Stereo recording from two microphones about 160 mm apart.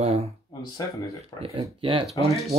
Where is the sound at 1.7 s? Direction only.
35° right (ahead or behind).